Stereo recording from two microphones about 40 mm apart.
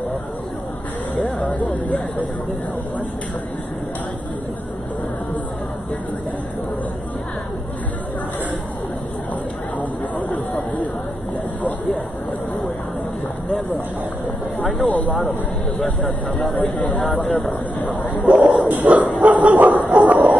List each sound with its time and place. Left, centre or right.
1.5 s speech: left
9.8 s speech: left
14.9 s speech: left
16.7 s speech: left
18.2 s a sound: right
18.7 s bow-wow: right
19.6 s a sound: right